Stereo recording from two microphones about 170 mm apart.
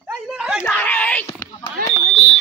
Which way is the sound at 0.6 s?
10° left (ahead or behind).